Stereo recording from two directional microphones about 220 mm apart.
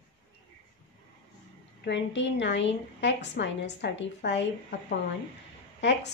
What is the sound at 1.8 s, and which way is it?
A woman's voice, 55° left (ahead or behind).